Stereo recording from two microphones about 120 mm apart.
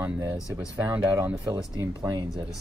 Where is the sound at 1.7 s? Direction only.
35° right (ahead or behind).